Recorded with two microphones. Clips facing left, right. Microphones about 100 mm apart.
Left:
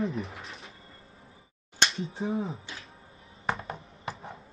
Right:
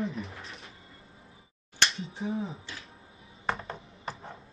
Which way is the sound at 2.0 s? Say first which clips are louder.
Left 3 dB; 30° left (ahead or behind).